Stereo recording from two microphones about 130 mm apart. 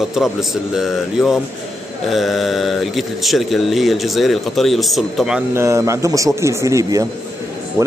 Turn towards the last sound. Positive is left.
turn(degrees=-20)  # may be behind; listen again after turning